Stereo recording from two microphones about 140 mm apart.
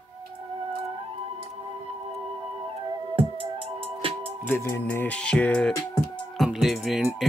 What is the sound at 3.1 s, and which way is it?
Music, 40° right (ahead or behind).